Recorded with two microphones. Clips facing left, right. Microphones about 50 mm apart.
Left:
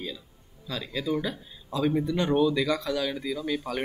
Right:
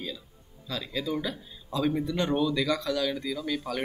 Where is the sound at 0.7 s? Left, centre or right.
Centre.